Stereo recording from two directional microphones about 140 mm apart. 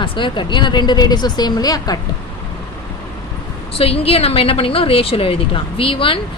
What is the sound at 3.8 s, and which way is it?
A woman's voice, 45° left (ahead or behind).